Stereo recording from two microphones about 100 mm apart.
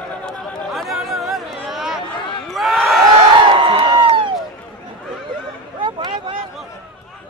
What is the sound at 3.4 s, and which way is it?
Crowd, 60° right (ahead or behind).